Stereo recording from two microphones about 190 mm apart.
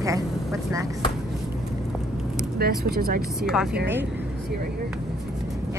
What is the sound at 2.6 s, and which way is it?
Speech, 55° right (ahead or behind).